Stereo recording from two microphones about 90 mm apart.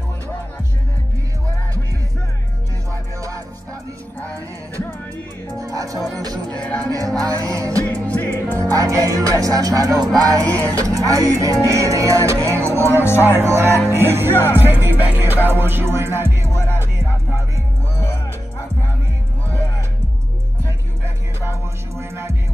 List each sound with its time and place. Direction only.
3.2 s music: 35° right (ahead or behind)
5.5 s music: 40° right (ahead or behind)
6.6 s music: 15° left (ahead or behind)
7.2 s music: 40° right (ahead or behind)
7.8 s music: 20° left (ahead or behind)
8.5 s music: 40° right (ahead or behind)